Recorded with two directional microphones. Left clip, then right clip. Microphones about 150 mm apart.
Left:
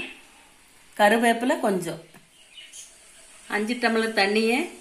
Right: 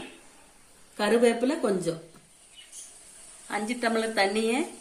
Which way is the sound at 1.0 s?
55° left (ahead or behind).